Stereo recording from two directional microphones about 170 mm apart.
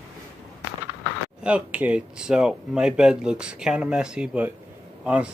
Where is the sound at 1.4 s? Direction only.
10° right (ahead or behind).